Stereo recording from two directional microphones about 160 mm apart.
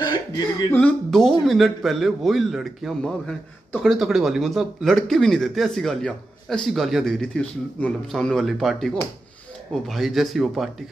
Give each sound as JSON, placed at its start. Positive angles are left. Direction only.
{"t": 0.0, "sound": "speech", "side_deg": 25}
{"t": 0.7, "sound": "a man's voice", "side_deg": 10}